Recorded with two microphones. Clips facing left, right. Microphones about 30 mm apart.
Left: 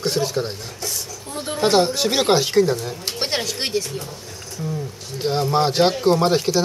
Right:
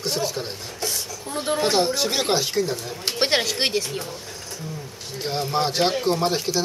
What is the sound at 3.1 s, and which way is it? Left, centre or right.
Speech, centre.